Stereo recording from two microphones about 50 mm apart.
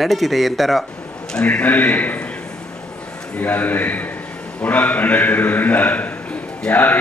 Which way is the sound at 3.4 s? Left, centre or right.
Left.